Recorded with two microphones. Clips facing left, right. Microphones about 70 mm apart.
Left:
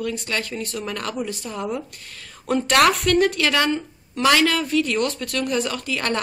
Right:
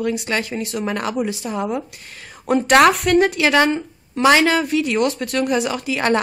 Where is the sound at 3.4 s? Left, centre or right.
Centre.